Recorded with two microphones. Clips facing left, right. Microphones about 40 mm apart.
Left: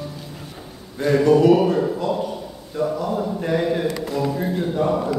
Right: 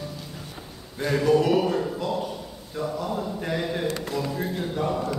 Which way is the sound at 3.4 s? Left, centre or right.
Centre.